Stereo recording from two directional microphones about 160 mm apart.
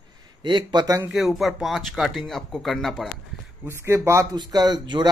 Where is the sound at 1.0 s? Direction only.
Centre (ahead or behind).